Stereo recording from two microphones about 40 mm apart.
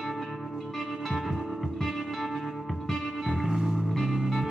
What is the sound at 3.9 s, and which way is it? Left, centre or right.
Music, centre.